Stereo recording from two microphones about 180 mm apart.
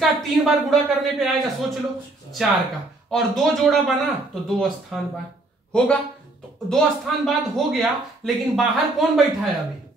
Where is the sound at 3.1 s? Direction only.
Centre (ahead or behind).